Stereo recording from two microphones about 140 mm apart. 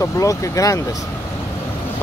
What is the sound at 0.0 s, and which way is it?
Speech, 25° left (ahead or behind).